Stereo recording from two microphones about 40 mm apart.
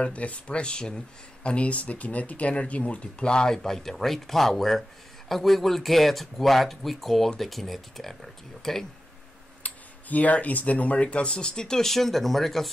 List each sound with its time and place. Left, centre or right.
0.0 s speech: left; by 8.8 s centre
9.6 s speech: left
11.3 s speech: centre